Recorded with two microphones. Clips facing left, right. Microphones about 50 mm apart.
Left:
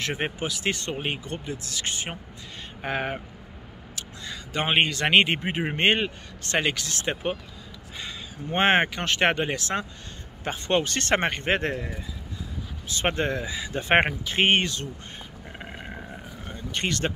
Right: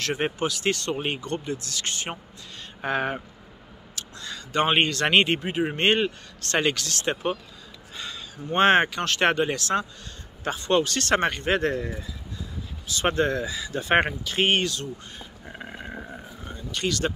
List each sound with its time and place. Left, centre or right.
0.0 s speech: centre
13.6 s speech: left
15.6 s a sound: centre
16.7 s speech: left